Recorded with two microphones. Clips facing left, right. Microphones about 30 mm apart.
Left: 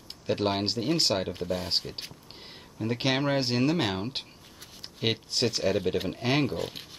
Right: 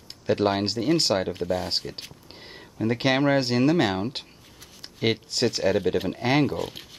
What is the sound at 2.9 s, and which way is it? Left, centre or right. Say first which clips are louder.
Speech: right 5 dB; centre.